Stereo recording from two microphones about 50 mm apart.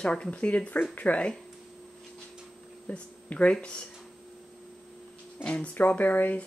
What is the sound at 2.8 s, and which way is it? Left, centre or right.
Speech, left.